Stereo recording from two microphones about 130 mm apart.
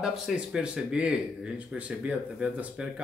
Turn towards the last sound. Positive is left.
turn(degrees=-10)  # may be behind; listen again after turning